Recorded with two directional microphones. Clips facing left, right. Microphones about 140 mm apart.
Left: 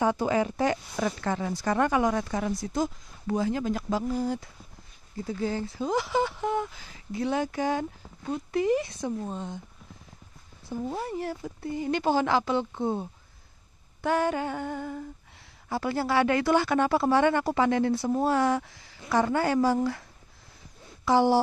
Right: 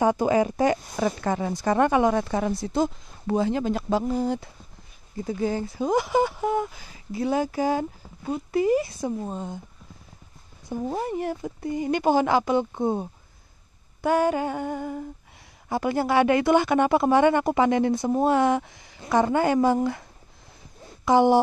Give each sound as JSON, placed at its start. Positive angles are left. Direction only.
{"t": 0.0, "sound": "a woman's voice", "side_deg": -15}
{"t": 10.6, "sound": "a sound", "side_deg": -20}
{"t": 11.1, "sound": "a woman's voice", "side_deg": -20}